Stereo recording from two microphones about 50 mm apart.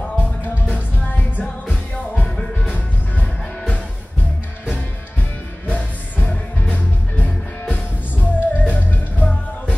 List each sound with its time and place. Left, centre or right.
2.6 s music: left
5.7 s music: left